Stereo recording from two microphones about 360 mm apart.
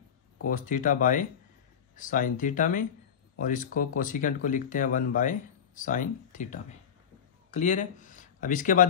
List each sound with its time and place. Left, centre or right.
0.5 s speech: left